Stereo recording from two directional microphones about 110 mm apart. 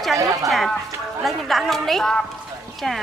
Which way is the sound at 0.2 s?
30° right (ahead or behind).